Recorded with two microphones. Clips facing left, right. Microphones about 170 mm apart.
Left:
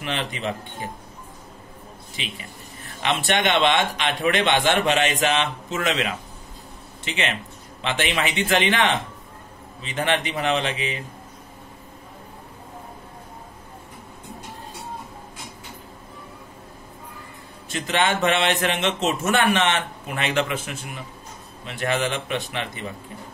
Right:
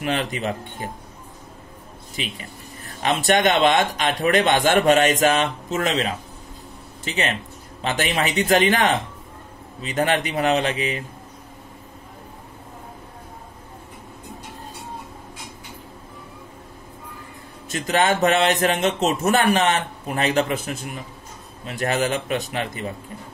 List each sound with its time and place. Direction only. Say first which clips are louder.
0.0 s a man's voice: right 4 dB; 45° right (ahead or behind)
2.2 s a man's voice: right 4 dB; 40° right (ahead or behind)
17.6 s a man's voice: right 3 dB; 40° right (ahead or behind)